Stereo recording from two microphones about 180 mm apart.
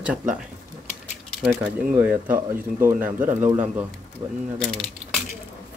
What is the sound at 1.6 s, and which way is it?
Speech, 10° right (ahead or behind).